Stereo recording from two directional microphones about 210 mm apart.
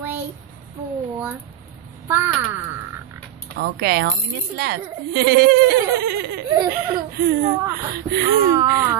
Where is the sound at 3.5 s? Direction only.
50° right (ahead or behind).